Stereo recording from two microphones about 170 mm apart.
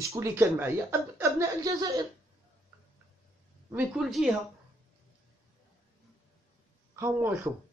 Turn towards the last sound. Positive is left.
turn(degrees=-15)  # may be behind; listen again after turning